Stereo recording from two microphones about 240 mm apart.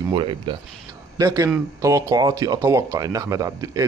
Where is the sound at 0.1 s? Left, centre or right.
Right.